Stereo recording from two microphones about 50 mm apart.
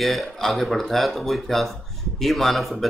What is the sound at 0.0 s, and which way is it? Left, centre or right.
Speech, centre.